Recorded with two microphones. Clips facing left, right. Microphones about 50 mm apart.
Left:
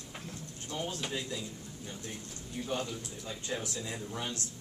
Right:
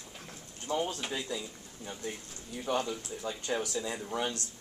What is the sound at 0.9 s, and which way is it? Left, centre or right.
Speech, centre.